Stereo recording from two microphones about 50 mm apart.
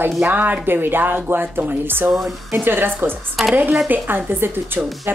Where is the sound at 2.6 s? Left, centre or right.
Right.